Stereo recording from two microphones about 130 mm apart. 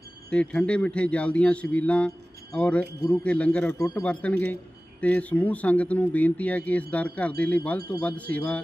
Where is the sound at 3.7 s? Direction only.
20° left (ahead or behind).